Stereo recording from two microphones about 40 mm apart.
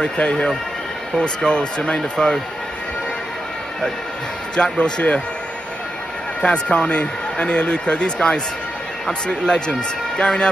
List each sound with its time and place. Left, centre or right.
0.0 s speech: left
4.7 s speech: left
6.4 s speech: left